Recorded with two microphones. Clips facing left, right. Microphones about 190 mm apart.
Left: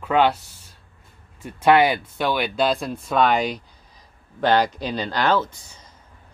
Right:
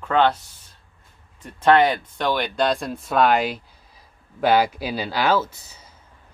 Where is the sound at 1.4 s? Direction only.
10° left (ahead or behind); by 5.9 s 5° right (ahead or behind).